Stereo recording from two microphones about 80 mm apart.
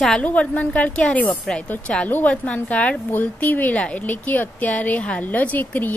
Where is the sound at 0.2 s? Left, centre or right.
Centre.